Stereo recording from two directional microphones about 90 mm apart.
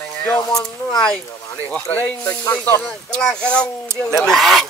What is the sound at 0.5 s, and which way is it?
Speech, 45° left (ahead or behind).